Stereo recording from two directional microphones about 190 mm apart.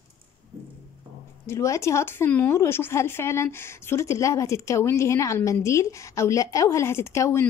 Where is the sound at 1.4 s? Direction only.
15° left (ahead or behind).